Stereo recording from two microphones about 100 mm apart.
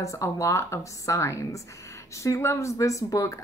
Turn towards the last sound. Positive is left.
turn(degrees=30)  # may be behind; listen again after turning